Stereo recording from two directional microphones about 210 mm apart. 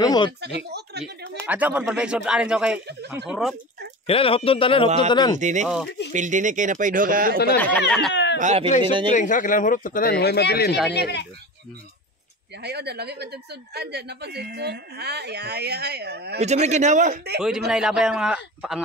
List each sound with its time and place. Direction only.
0.0 s speech: 20° left (ahead or behind)
0.7 s a sound: 50° right (ahead or behind)
1.5 s a man's voice: 5° right (ahead or behind)
4.1 s speech: 25° left (ahead or behind)
4.8 s speech: 30° right (ahead or behind)
5.9 s a sound: 55° left (ahead or behind)
6.1 s speech: 35° right (ahead or behind)
7.5 s speech: 10° left (ahead or behind)
8.1 s a sound: 55° left (ahead or behind)
8.4 s speech: 30° right (ahead or behind)
9.1 s speech: 40° left (ahead or behind); by 11.2 s 55° left (ahead or behind)
12.6 s a woman's voice: 50° right (ahead or behind)
16.3 s speech: 30° right (ahead or behind)
17.4 s a man's voice: 5° right (ahead or behind)